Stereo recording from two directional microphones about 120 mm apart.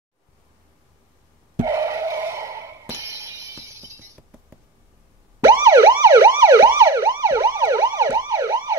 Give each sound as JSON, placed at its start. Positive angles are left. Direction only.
{"t": 1.6, "sound": "music", "side_deg": -25}
{"t": 5.4, "sound": "emergency vehicle", "side_deg": -25}